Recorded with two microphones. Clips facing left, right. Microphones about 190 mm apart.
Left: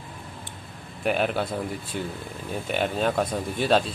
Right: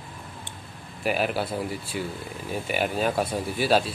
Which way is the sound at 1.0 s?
5° right (ahead or behind).